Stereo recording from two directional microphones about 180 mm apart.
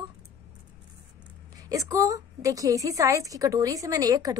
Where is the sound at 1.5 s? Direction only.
20° right (ahead or behind).